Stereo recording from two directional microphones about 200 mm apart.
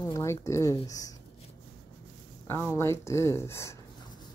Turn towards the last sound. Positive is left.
turn(degrees=15)  # may be behind; listen again after turning